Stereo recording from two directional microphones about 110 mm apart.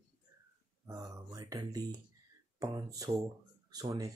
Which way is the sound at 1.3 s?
35° right (ahead or behind).